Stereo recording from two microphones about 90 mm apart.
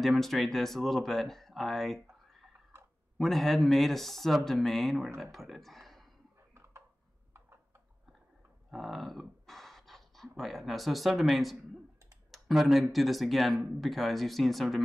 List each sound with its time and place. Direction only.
0.0 s speech: centre (ahead or behind)
3.2 s speech: centre (ahead or behind)
8.6 s speech: centre (ahead or behind)